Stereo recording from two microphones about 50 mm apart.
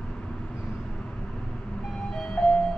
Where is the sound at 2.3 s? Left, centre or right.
Centre.